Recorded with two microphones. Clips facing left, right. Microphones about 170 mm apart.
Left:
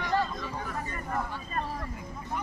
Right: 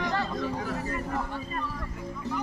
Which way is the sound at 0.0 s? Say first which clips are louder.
Right 1 dB; 75° right (ahead or behind).